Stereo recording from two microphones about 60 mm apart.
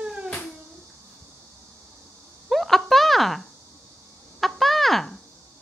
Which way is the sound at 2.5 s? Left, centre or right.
Centre.